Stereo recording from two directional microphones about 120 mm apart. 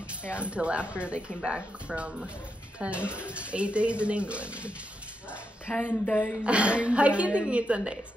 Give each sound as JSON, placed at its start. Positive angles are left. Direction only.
{"t": 0.4, "sound": "speech", "side_deg": -10}
{"t": 5.7, "sound": "speech", "side_deg": 15}
{"t": 6.4, "sound": "speech", "side_deg": -10}